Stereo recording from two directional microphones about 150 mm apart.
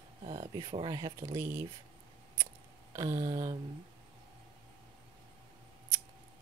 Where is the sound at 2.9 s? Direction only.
25° right (ahead or behind).